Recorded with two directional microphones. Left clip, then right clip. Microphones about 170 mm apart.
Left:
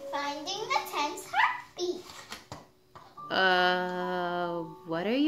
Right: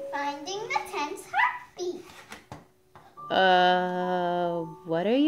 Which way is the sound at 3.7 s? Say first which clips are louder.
Right 5 dB; 45° right (ahead or behind).